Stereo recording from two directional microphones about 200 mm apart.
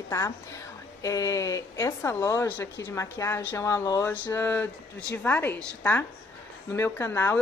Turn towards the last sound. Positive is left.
turn(degrees=10)  # may be behind; listen again after turning